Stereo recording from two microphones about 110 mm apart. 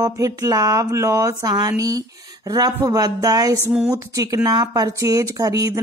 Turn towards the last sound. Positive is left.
turn(degrees=-30)  # may be behind; listen again after turning